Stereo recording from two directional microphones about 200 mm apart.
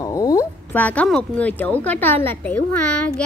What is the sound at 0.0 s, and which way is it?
Speech, 15° left (ahead or behind).